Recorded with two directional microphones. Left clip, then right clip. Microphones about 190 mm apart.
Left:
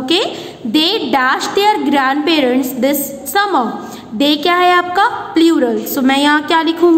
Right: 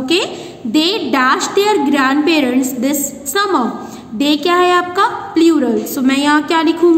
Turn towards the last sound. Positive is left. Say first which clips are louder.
# left 1 dB
turn(degrees=15)  # may be behind; listen again after turning